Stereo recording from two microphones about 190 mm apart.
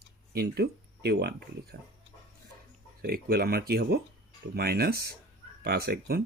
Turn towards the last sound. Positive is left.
turn(degrees=-55)  # may be behind; listen again after turning